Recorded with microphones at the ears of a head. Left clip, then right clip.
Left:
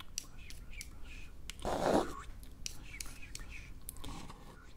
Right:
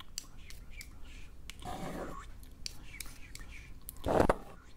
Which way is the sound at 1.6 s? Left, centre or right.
Left.